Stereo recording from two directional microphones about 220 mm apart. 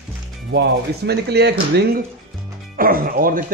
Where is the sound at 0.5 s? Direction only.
50° right (ahead or behind).